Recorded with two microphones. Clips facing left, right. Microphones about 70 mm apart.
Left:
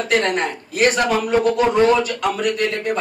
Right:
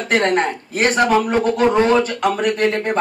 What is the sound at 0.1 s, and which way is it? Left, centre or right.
A man's voice, right.